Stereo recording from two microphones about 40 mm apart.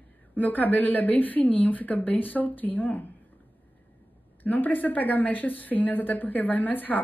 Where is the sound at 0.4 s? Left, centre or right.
Left.